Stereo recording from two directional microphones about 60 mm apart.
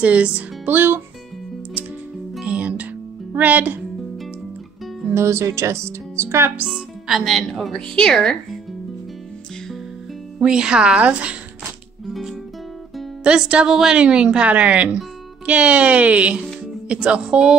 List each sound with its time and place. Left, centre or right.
0.0 s speech: right
0.7 s speech: right
2.4 s music: right
3.3 s speech: right
5.1 s speech: right
6.7 s speech: centre
10.4 s a woman's voice: centre
13.2 s a woman's voice: centre